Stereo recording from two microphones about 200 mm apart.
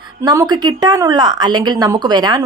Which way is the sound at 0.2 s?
20° right (ahead or behind).